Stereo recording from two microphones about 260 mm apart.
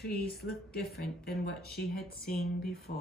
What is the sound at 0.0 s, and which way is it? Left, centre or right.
A woman's voice, left.